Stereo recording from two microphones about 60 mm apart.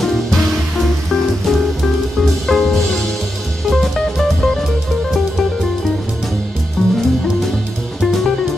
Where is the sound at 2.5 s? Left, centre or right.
Centre.